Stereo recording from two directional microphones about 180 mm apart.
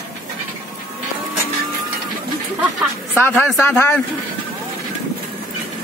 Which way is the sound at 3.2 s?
10° left (ahead or behind).